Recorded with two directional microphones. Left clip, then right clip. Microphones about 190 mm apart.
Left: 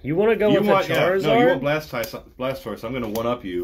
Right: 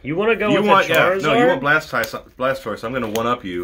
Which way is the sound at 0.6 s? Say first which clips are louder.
Right 4 dB; 20° right (ahead or behind).